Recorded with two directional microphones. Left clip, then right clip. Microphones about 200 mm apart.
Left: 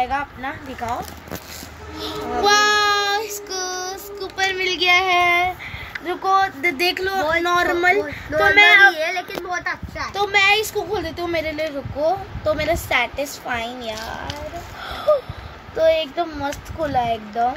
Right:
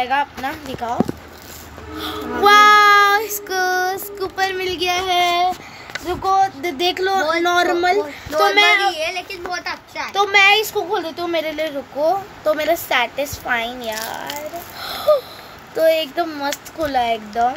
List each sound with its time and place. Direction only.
0.0 s speech: 10° right (ahead or behind)
2.0 s child singing: 50° right (ahead or behind)
4.4 s speech: 25° right (ahead or behind)
4.9 s child singing: 5° right (ahead or behind)
6.0 s speech: centre (ahead or behind)
6.9 s speech: 25° right (ahead or behind)
7.7 s speech: 5° right (ahead or behind)
8.9 s speech: 45° right (ahead or behind)
10.1 s speech: centre (ahead or behind)
14.9 s a sound: 10° right (ahead or behind)
15.7 s speech: 10° right (ahead or behind)